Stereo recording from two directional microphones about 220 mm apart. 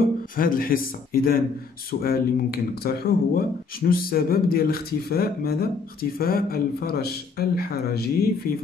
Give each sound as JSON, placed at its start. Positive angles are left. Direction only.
{"t": 0.4, "sound": "speech", "side_deg": 40}